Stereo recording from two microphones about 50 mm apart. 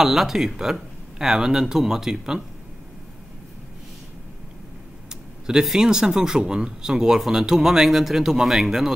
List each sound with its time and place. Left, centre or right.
0.0 s speech: centre
5.5 s speech: centre